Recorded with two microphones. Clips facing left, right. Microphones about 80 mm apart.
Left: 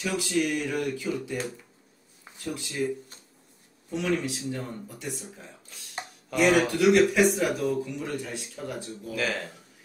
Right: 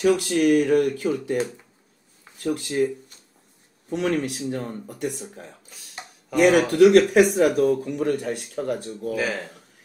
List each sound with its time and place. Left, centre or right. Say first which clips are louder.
0.0 s speech: right 8 dB; right
3.9 s speech: right 4 dB; right
9.1 s speech: right 3 dB; centre